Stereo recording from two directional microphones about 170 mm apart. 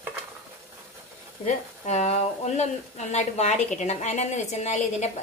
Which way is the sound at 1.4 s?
40° left (ahead or behind).